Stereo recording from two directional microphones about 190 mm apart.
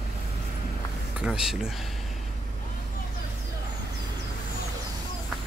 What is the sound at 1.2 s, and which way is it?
Speech, 5° right (ahead or behind).